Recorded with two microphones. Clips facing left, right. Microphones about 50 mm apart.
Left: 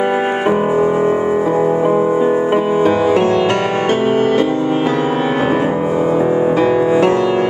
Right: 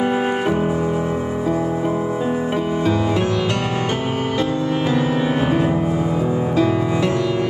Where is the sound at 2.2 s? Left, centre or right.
Left.